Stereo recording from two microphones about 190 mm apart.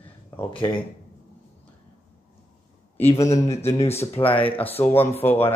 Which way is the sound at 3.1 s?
15° left (ahead or behind).